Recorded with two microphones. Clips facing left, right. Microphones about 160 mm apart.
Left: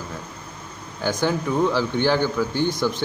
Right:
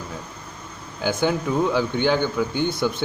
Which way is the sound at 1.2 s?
15° right (ahead or behind).